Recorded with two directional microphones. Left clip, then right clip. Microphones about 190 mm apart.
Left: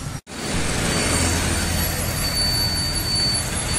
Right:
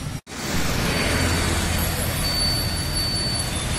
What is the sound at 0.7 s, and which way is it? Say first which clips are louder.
Vehicle: left 1 dB; 45° left (ahead or behind).